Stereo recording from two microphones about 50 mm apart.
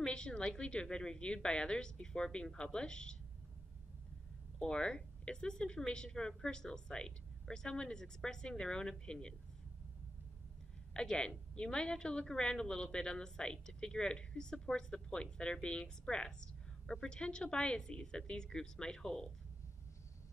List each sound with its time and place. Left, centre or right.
0.0 s a woman's voice: centre
4.6 s a woman's voice: centre
10.9 s a woman's voice: centre